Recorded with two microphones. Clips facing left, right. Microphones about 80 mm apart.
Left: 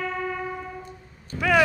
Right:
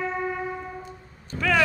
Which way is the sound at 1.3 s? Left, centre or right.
Centre.